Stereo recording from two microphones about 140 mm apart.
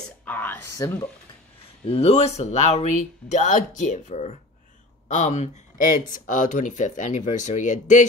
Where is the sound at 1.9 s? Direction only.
45° left (ahead or behind).